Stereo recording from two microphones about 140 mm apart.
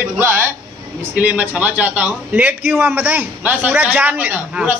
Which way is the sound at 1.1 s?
10° right (ahead or behind).